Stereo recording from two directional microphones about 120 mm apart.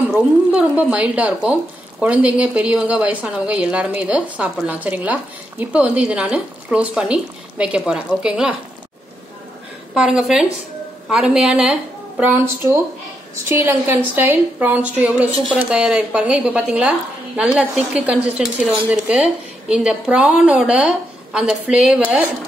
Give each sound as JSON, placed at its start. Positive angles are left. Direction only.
{"t": 0.1, "sound": "speech", "side_deg": -10}
{"t": 9.9, "sound": "speech", "side_deg": -5}
{"t": 13.5, "sound": "speech", "side_deg": -20}